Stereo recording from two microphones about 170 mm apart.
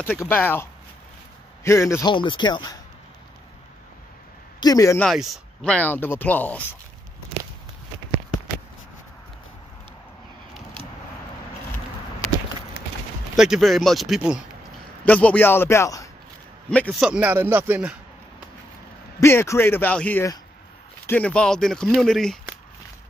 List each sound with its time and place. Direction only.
0.0 s speech: 10° left (ahead or behind)
4.6 s speech: 20° left (ahead or behind)
5.0 s speech: centre (ahead or behind)
13.4 s speech: centre (ahead or behind)
15.0 s speech: 10° left (ahead or behind)
17.1 s a man's voice: 10° right (ahead or behind)
19.1 s speech: 15° left (ahead or behind)